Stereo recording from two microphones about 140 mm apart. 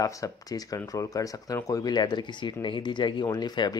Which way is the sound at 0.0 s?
25° left (ahead or behind).